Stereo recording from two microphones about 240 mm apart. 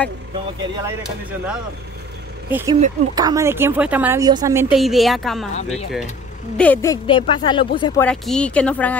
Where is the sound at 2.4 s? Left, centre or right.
Centre.